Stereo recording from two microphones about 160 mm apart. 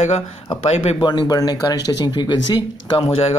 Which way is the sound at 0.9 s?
25° left (ahead or behind).